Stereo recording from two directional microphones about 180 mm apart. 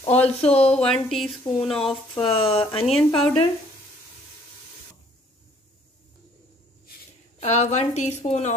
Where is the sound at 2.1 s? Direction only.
30° left (ahead or behind).